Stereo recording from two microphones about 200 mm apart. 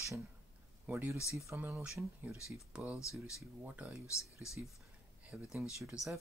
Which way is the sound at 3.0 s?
15° left (ahead or behind).